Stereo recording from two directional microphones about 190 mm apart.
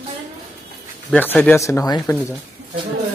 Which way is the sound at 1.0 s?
10° left (ahead or behind).